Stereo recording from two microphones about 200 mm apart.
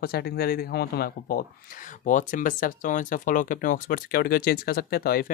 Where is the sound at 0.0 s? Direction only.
50° left (ahead or behind).